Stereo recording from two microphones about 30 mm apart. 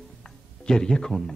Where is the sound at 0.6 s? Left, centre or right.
Left.